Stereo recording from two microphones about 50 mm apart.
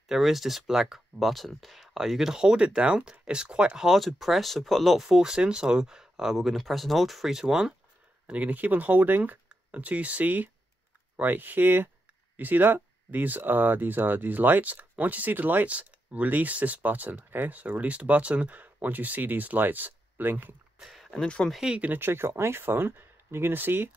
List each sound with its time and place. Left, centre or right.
0.1 s speech: centre
3.7 s speech: centre
8.3 s speech: right
20.8 s a sound: centre
21.1 s speech: centre
21.9 s speech: right